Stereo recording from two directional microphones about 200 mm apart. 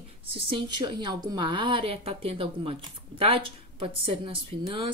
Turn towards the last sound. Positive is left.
turn(degrees=-25)  # may be behind; listen again after turning